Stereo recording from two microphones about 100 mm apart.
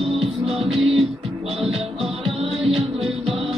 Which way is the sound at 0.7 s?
75° right (ahead or behind).